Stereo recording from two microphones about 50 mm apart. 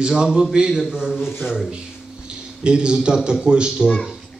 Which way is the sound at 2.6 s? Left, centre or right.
Centre.